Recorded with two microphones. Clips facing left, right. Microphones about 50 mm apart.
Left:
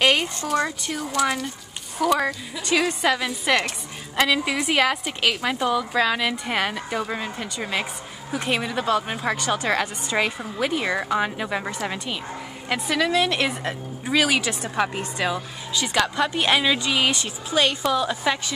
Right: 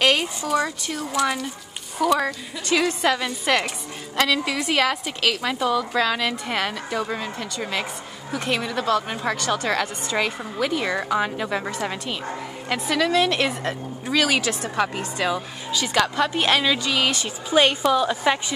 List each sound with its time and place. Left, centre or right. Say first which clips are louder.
0.0 s a sound: even; centre
0.4 s speech: right 1 dB; centre
4.2 s a woman's voice: left 1 dB; centre
17.5 s a woman's voice: right 3 dB; right
17.8 s speech: right 3 dB; centre